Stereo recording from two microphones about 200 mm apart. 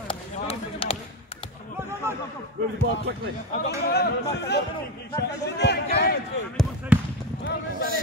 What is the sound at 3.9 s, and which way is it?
Speech, 55° left (ahead or behind).